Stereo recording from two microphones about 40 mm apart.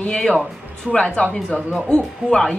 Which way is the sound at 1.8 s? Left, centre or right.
Left.